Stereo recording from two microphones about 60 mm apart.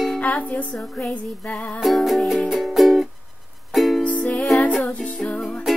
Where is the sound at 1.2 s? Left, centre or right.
Centre.